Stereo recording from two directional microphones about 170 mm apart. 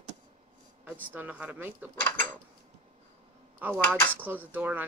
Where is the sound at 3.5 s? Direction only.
10° right (ahead or behind).